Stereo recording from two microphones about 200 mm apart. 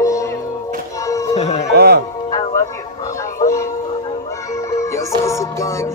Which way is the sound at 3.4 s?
15° left (ahead or behind).